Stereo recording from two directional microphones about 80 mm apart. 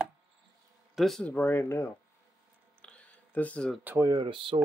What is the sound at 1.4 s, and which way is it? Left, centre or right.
Speech, left.